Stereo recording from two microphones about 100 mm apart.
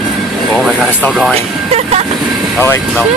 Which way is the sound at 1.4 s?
90° right.